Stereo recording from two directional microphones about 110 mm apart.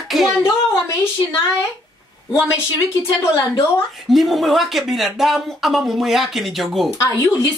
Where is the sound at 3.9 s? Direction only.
Centre (ahead or behind).